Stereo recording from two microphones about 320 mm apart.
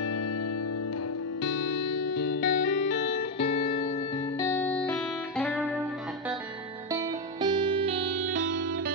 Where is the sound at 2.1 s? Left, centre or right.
Left; by 4.9 s centre.